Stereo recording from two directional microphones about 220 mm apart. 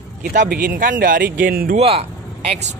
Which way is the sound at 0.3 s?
40° right (ahead or behind).